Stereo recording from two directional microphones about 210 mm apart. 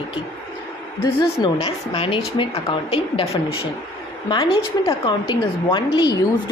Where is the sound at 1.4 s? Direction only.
20° left (ahead or behind).